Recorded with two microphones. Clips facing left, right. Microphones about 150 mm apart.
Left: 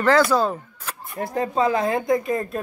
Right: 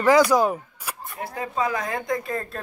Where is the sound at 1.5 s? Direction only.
30° left (ahead or behind).